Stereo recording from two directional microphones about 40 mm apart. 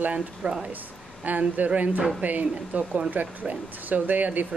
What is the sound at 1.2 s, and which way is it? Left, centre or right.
Speech, right.